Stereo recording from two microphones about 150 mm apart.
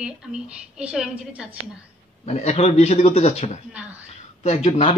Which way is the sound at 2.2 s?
45° left (ahead or behind).